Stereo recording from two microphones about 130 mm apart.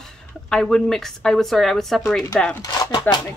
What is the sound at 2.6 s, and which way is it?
Speech, 30° left (ahead or behind).